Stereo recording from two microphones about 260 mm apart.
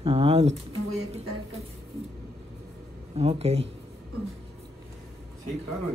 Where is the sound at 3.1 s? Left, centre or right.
Right.